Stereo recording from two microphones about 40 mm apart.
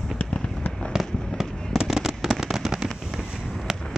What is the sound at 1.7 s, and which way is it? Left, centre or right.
Fireworks, centre.